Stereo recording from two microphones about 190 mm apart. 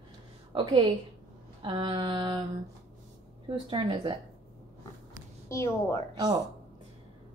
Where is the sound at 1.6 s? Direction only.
25° right (ahead or behind).